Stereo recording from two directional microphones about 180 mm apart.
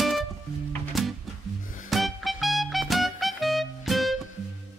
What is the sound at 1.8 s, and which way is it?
Music, centre (ahead or behind).